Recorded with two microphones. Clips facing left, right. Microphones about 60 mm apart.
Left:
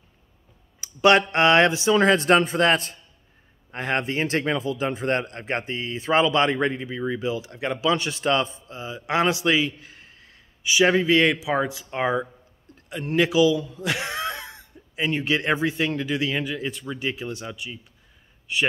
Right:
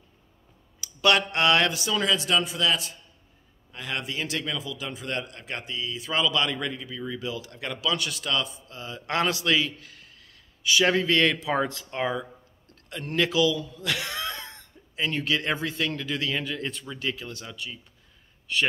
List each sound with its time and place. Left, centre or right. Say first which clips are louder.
0.7 s a man's voice: left 5 dB; left
10.7 s speech: left 4 dB; centre
16.8 s speech: left 4 dB; centre